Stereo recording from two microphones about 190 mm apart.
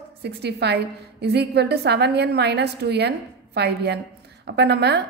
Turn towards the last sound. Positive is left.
turn(degrees=-60)  # may be behind; listen again after turning